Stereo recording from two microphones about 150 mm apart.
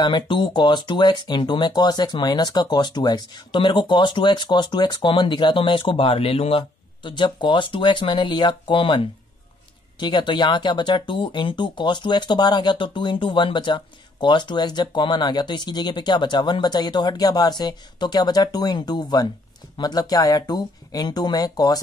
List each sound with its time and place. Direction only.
0.0 s speech: 30° left (ahead or behind)